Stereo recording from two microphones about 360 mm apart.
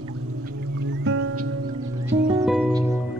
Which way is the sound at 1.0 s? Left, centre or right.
Right.